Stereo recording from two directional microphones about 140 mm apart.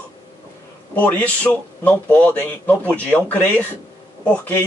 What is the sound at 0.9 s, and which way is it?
A man's voice, 10° left (ahead or behind).